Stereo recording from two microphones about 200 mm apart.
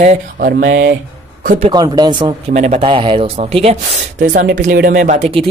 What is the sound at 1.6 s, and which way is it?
Speech, 20° right (ahead or behind).